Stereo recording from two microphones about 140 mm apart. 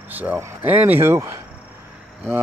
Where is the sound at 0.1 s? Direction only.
10° right (ahead or behind).